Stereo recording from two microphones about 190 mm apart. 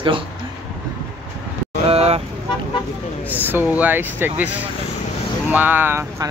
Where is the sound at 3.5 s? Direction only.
10° right (ahead or behind).